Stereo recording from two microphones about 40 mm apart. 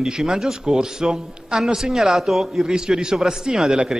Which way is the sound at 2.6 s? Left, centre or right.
Centre.